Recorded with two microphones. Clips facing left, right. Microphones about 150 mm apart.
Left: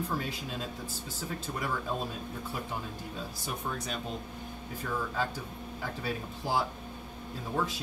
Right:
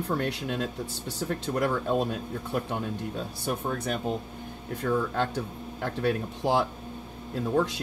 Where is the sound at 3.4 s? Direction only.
60° right (ahead or behind).